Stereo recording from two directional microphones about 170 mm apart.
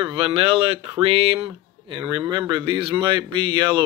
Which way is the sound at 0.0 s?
30° right (ahead or behind).